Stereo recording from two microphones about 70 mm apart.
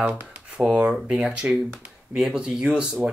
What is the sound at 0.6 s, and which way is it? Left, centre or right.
Speech, centre.